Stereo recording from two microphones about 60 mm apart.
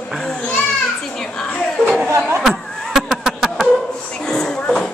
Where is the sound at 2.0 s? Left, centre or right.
Right.